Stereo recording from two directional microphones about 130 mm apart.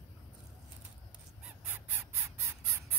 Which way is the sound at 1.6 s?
15° right (ahead or behind).